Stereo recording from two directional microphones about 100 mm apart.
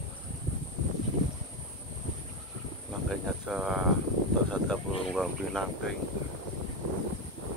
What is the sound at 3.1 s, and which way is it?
Cricket, centre (ahead or behind).